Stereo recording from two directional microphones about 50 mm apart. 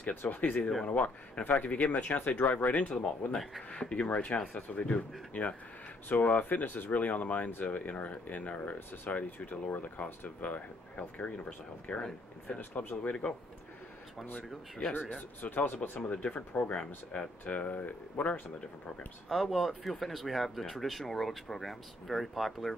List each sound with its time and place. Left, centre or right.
0.1 s speech: left
12.4 s speech: left
15.4 s speech: left
16.0 s speech: left
19.2 s speech: centre